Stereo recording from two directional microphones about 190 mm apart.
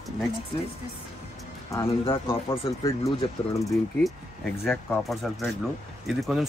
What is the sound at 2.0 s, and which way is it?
Speech, 30° left (ahead or behind).